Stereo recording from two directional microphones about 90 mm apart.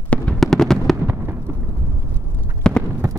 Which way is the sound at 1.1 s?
25° right (ahead or behind).